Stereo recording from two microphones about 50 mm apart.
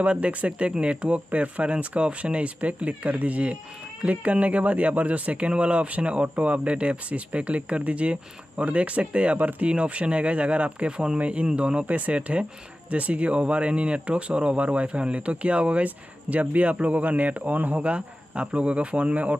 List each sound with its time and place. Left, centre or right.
0.0 s speech: right